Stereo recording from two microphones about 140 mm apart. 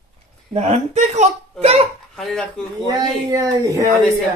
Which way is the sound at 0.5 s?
50° right (ahead or behind).